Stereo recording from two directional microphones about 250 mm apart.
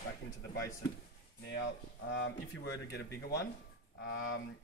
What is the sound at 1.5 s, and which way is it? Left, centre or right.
Speech, left.